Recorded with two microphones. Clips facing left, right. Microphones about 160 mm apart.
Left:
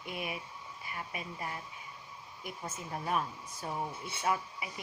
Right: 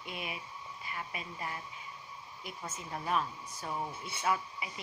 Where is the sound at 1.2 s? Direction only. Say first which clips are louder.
Left 1 dB; 25° left (ahead or behind).